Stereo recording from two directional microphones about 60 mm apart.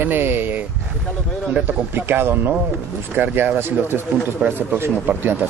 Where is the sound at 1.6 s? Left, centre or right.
Right.